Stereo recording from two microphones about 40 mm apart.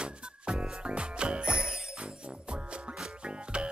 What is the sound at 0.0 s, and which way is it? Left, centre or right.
Music, right.